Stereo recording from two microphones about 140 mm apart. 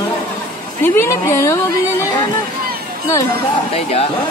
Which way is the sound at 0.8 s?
20° left (ahead or behind).